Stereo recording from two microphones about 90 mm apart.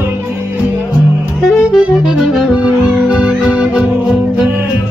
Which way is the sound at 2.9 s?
5° right (ahead or behind).